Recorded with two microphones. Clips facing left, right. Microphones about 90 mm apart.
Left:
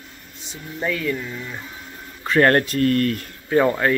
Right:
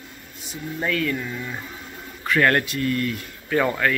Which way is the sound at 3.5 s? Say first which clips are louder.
Left 3 dB; 25° left (ahead or behind).